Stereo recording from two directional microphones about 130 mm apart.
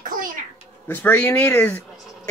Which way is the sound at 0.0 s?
90° right.